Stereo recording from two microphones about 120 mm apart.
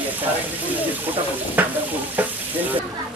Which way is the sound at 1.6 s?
15° right (ahead or behind).